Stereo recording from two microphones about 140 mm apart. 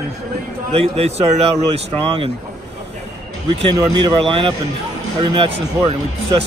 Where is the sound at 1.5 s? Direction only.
50° right (ahead or behind).